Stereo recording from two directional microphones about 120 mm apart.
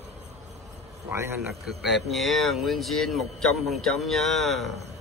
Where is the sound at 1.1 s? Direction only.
20° right (ahead or behind).